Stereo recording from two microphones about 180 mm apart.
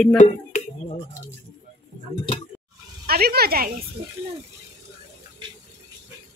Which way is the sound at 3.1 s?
60° right (ahead or behind).